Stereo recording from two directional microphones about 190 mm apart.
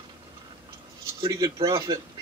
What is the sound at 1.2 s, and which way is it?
Speech, 20° right (ahead or behind).